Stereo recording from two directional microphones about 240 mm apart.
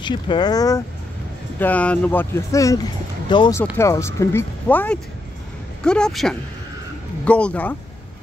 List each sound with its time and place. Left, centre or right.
0.0 s speech: centre